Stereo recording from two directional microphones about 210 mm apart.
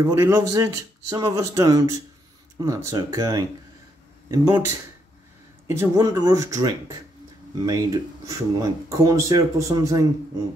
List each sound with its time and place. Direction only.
0.0 s speech: 10° right (ahead or behind)